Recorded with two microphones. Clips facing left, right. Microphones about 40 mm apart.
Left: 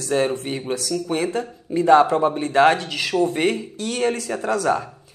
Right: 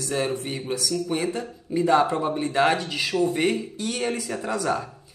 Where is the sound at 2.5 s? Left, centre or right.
Left.